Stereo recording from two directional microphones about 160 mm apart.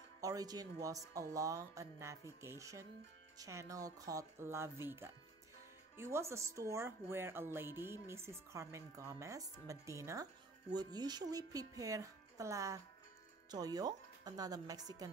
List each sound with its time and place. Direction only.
0.2 s a woman's voice: 20° right (ahead or behind)